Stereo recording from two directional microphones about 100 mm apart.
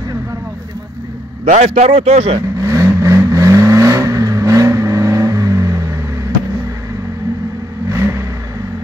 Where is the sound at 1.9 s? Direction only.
90° right.